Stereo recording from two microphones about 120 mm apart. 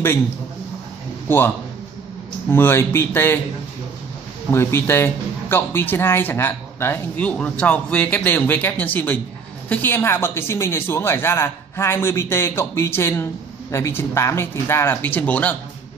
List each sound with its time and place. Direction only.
2.5 s speech: 20° left (ahead or behind)
4.5 s speech: 20° left (ahead or behind)